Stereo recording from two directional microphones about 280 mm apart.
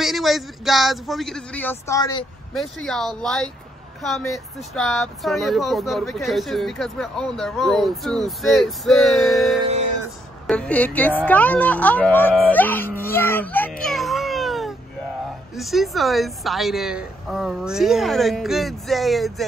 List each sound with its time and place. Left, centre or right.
0.0 s speech: centre
2.5 s a woman's voice: centre